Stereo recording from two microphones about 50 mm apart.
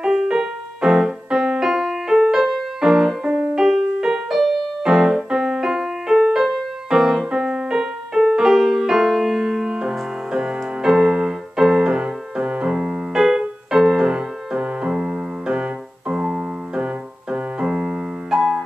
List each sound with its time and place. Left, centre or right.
0.0 s music: centre
4.8 s keyboard: centre
6.1 s music: centre
6.4 s music: centre
10.3 s music: centre